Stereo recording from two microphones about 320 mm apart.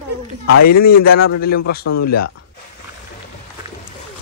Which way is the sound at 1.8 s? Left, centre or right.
Left.